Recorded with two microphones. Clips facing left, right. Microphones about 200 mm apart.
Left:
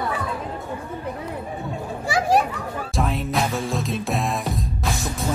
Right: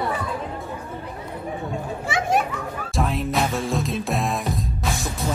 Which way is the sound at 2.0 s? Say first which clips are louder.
Left 3 dB; 35° left (ahead or behind).